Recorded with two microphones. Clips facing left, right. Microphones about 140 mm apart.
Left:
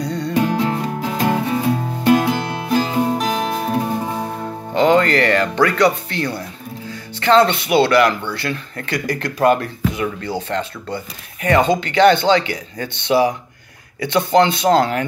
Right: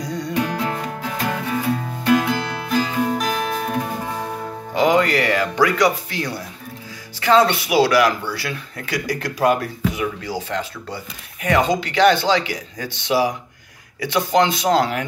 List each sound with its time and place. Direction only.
0.0 s music: 10° right (ahead or behind)
0.3 s music: 30° left (ahead or behind)
4.7 s music: 10° right (ahead or behind)
7.2 s speech: 5° right (ahead or behind)